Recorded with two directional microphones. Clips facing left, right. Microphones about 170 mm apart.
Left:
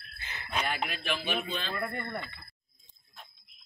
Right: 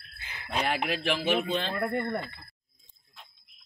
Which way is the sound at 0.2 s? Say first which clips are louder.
Left 1 dB; 10° right (ahead or behind).